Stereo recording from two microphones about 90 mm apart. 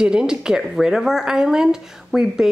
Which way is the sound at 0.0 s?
10° right (ahead or behind).